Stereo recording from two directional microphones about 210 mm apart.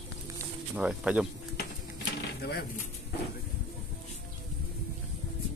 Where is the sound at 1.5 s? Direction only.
50° left (ahead or behind).